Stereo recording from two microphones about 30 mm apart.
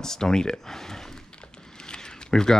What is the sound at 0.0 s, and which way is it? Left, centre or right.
Speech, centre.